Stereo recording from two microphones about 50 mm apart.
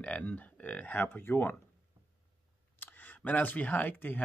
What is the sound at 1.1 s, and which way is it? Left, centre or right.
Speech, left.